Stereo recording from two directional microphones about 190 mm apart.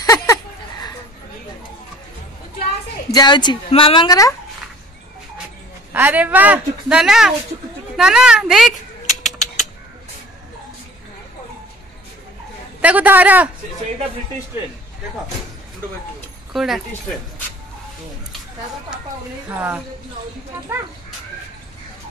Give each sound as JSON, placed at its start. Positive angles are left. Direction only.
{"t": 0.0, "sound": "a sound", "side_deg": 15}
{"t": 3.1, "sound": "a woman's voice", "side_deg": 20}
{"t": 5.9, "sound": "a woman's voice", "side_deg": -10}
{"t": 9.2, "sound": "a sound", "side_deg": 0}
{"t": 12.8, "sound": "speech", "side_deg": -10}
{"t": 16.5, "sound": "a woman's voice", "side_deg": 0}
{"t": 19.5, "sound": "speech", "side_deg": -10}